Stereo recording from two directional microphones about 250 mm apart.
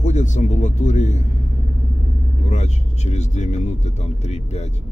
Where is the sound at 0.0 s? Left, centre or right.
Left.